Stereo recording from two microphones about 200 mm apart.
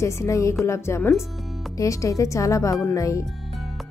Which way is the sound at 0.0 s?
15° left (ahead or behind).